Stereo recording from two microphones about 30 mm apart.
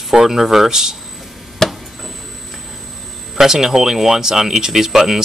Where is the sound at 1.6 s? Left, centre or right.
Centre.